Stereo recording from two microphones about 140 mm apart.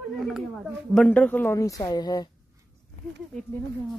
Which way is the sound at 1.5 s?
25° left (ahead or behind).